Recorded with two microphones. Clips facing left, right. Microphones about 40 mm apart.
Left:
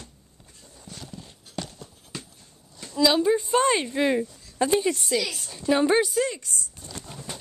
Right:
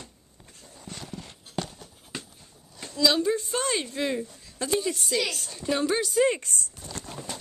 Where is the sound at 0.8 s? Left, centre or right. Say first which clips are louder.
Right 2 dB; right.